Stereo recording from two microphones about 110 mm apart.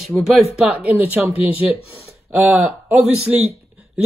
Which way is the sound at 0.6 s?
10° right (ahead or behind).